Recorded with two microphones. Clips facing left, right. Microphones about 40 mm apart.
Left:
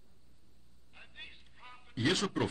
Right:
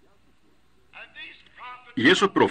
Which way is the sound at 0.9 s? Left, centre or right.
Right.